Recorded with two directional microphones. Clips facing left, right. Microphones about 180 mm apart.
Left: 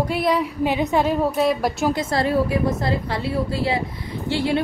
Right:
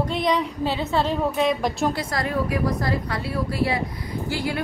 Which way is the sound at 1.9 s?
30° left (ahead or behind).